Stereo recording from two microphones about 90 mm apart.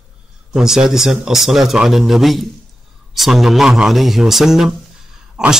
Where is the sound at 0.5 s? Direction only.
5° right (ahead or behind).